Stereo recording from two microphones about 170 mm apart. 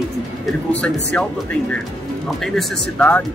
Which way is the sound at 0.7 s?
10° left (ahead or behind).